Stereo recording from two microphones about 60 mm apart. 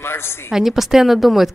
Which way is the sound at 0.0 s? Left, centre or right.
Left.